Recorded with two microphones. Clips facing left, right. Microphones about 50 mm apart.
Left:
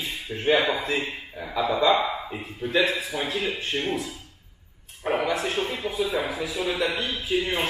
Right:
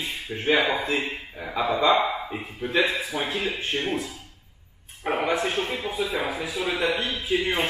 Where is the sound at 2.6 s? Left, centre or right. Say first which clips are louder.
Even; right.